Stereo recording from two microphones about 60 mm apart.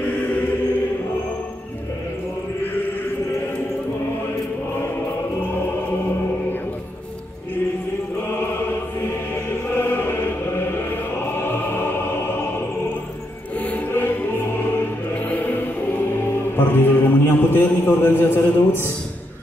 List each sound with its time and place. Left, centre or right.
8.3 s music: left
13.6 s music: left
13.9 s music: left